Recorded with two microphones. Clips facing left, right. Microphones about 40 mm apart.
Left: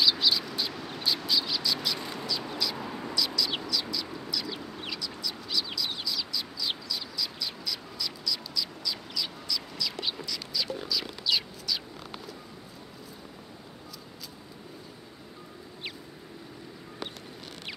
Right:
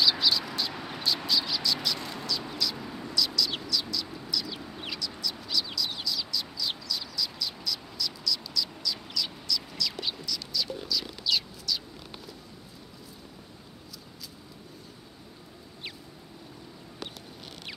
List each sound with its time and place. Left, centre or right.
0.0 s a sound: centre
2.9 s a sound: left
3.2 s bird: centre
4.3 s chicken: centre
4.7 s chicken: centre
5.0 s bird: centre